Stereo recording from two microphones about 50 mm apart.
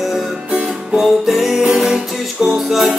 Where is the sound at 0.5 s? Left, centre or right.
Right.